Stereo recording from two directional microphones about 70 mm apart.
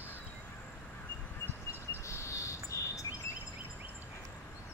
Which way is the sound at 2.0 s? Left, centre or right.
Left.